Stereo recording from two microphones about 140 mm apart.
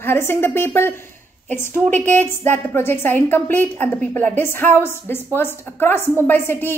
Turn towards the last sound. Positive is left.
turn(degrees=15)  # may be behind; listen again after turning